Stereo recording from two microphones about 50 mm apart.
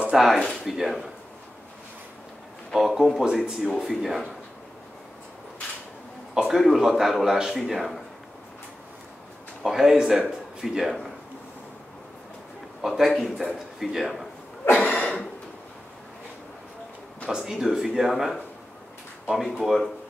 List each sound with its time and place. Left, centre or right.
0.1 s a man's voice: centre
2.7 s speech: centre
3.8 s a man's voice: centre
6.3 s a man's voice: centre
9.6 s a man's voice: centre
12.8 s a man's voice: centre
14.8 s throat clearing: left
17.3 s speech: centre
19.6 s a man's voice: centre